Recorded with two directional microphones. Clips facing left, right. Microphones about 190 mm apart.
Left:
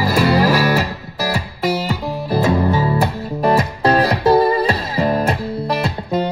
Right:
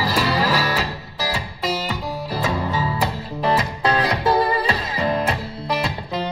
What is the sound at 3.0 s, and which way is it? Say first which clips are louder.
Music: left 5 dB; 50° left (ahead or behind).